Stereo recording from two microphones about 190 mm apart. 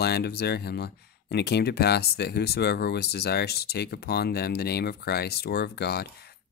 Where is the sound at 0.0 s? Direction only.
55° left (ahead or behind).